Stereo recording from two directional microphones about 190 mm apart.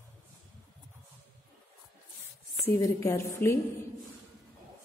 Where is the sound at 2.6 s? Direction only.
15° left (ahead or behind).